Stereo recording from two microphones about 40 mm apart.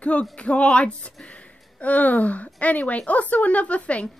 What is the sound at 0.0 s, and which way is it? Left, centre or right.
Speech, left.